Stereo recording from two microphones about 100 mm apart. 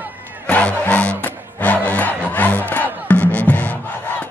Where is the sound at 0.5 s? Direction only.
15° left (ahead or behind).